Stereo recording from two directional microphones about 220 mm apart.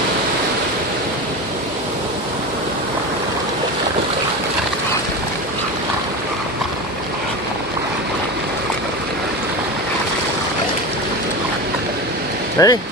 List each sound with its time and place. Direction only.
12.6 s speech: 15° left (ahead or behind)